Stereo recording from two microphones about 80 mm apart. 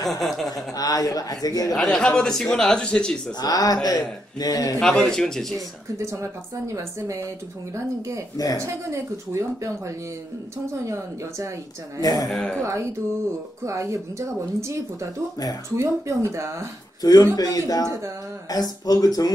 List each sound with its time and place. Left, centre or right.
0.1 s speech: centre
0.7 s a man's voice: left
1.8 s a man's voice: centre
3.3 s a man's voice: left
4.7 s a man's voice: centre
5.9 s speech: right
8.5 s speech: right
12.0 s a man's voice: left
12.3 s a man's voice: centre
13.7 s speech: right
17.0 s a man's voice: left